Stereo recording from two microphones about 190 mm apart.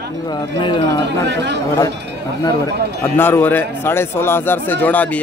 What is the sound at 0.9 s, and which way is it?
Speech, 65° right (ahead or behind).